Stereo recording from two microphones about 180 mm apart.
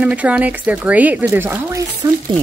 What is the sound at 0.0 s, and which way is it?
Speech, 10° right (ahead or behind).